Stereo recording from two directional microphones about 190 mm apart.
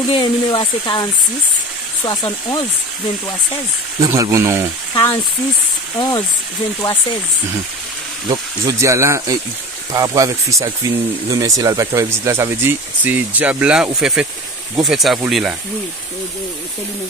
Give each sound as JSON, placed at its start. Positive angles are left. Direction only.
{"t": 0.1, "sound": "speech", "side_deg": 25}
{"t": 4.0, "sound": "speech", "side_deg": -15}
{"t": 4.9, "sound": "speech", "side_deg": 15}
{"t": 8.3, "sound": "speech", "side_deg": -15}